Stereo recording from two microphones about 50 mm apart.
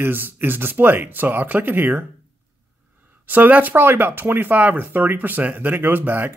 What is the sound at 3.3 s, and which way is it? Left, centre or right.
Speech, right.